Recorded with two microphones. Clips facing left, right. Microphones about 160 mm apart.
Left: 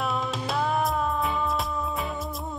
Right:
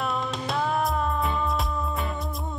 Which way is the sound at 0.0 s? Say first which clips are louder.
Even; centre (ahead or behind).